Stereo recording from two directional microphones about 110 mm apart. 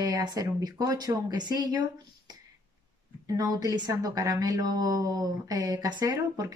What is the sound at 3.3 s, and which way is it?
A woman's voice, 35° right (ahead or behind).